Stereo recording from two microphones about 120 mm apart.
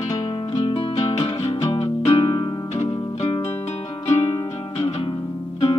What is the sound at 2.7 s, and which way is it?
Music, 60° left (ahead or behind).